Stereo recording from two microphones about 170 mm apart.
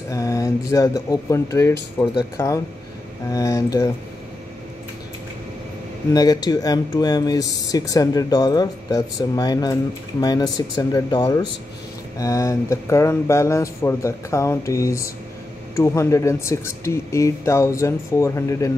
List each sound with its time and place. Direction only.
0.1 s speech: 20° left (ahead or behind)
6.1 s speech: 20° left (ahead or behind)